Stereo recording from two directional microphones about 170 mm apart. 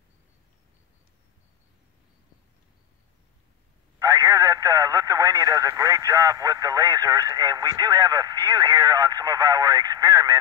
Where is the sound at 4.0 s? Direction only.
25° right (ahead or behind).